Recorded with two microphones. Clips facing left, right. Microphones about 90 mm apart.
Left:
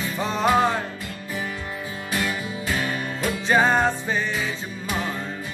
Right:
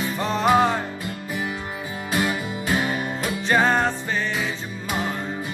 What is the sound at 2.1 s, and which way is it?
Music, 20° right (ahead or behind).